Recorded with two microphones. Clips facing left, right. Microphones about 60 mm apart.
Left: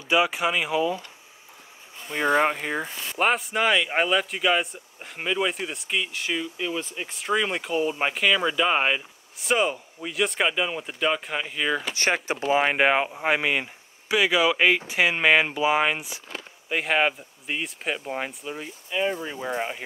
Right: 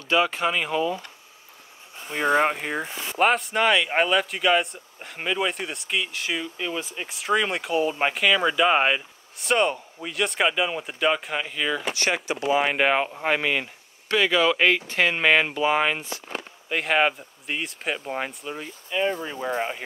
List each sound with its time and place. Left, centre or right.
0.1 s speech: centre
2.2 s speech: centre
11.9 s speech: left
12.5 s speech: centre